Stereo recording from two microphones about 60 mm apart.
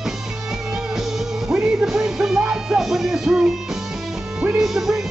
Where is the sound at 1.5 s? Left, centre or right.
Centre.